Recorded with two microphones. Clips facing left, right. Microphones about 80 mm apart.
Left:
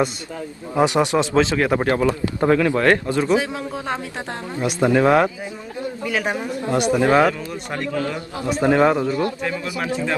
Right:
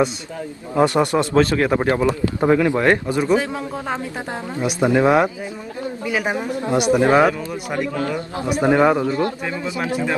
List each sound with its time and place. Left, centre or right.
0.7 s a man's voice: centre
1.9 s speech: centre
3.3 s a man's voice: centre
4.6 s speech: centre
9.0 s speech: right